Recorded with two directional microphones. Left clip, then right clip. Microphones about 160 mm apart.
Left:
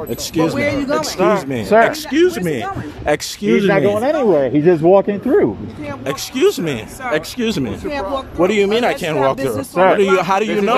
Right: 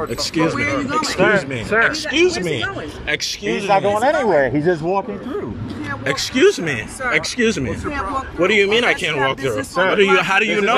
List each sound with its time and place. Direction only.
0.4 s speech: 30° left (ahead or behind)
1.7 s a man's voice: 50° left (ahead or behind)
6.0 s speech: 20° left (ahead or behind)